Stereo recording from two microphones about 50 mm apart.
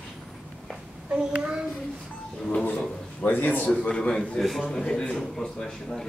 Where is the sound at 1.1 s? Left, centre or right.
Centre.